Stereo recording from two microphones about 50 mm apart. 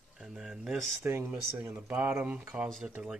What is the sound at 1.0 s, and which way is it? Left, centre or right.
Speech, right.